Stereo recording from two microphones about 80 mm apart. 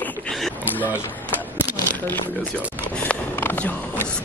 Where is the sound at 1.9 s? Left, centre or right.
Left.